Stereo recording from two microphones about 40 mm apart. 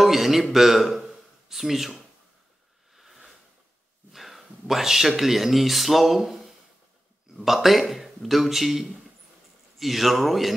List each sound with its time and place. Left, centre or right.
0.0 s a man's voice: centre
2.9 s a sound: centre
4.1 s speech: centre